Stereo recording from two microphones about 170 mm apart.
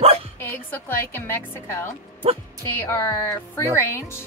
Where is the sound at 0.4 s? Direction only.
10° left (ahead or behind).